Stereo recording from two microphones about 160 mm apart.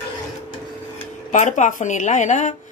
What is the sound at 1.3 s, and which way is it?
A woman's voice, 50° left (ahead or behind).